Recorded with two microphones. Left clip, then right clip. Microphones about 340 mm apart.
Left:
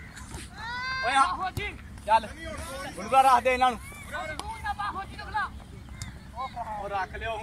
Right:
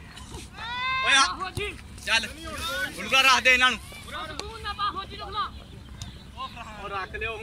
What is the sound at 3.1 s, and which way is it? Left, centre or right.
Speech, centre.